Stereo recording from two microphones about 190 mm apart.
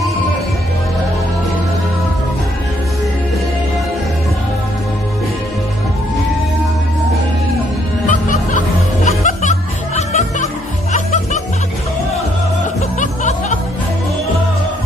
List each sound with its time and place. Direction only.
8.1 s music: 40° left (ahead or behind)
13.0 s music: 40° left (ahead or behind)